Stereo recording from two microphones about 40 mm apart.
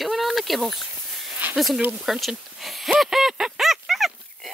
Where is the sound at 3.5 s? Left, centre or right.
Centre.